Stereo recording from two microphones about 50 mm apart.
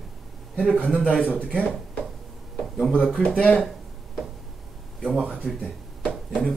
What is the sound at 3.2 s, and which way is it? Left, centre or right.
Speech, left.